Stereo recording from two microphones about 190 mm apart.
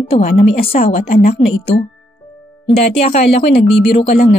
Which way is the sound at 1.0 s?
50° left (ahead or behind).